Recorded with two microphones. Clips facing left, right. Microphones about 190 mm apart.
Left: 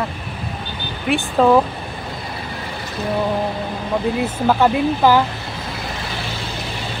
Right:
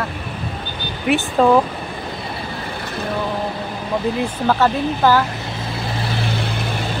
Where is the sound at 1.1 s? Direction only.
Centre (ahead or behind).